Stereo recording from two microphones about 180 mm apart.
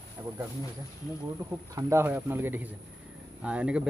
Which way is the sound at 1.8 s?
15° right (ahead or behind).